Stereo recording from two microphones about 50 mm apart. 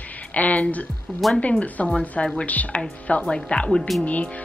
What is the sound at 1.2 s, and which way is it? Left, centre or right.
Speech, centre.